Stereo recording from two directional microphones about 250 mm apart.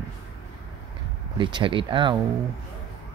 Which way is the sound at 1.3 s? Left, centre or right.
Centre.